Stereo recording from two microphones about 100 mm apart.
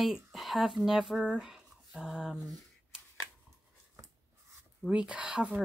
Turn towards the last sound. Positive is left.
turn(degrees=-10)  # may be behind; listen again after turning